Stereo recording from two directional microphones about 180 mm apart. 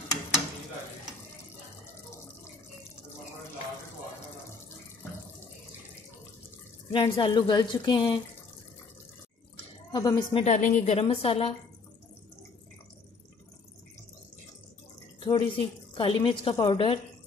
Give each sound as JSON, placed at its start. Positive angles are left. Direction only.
{"t": 6.9, "sound": "a woman's voice", "side_deg": 25}
{"t": 9.9, "sound": "a woman's voice", "side_deg": 25}
{"t": 10.4, "sound": "a woman's voice", "side_deg": 40}
{"t": 15.2, "sound": "a woman's voice", "side_deg": 30}